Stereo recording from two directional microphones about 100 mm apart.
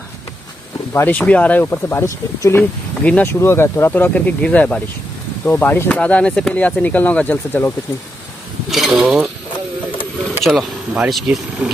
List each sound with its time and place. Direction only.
0.9 s speech: 15° left (ahead or behind)
3.0 s speech: 15° left (ahead or behind)
3.3 s speech: 25° left (ahead or behind)
8.6 s speech: centre (ahead or behind)
10.4 s speech: centre (ahead or behind)